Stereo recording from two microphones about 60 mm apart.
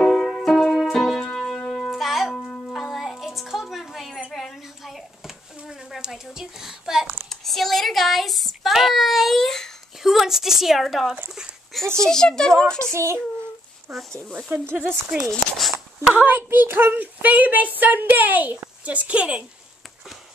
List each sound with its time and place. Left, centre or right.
0.0 s music: centre
0.9 s keyboard: centre
1.9 s music: centre
4.3 s a sound: centre
7.2 s child singing: centre
10.0 s a sound: centre
12.0 s a child's voice: centre
12.9 s a child's voice: right
13.9 s speech: centre
14.5 s a woman's voice: right
15.2 s speech: centre
16.1 s a woman's voice: right